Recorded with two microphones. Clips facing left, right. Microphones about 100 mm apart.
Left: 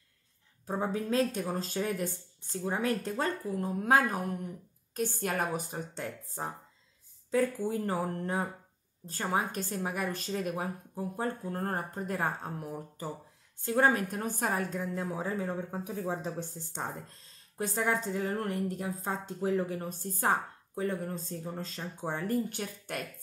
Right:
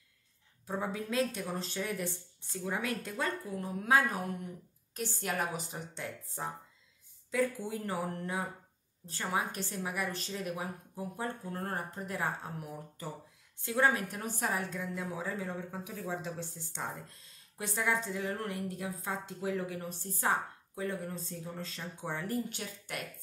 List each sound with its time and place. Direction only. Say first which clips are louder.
0.8 s a woman's voice: left 4 dB; 35° left (ahead or behind)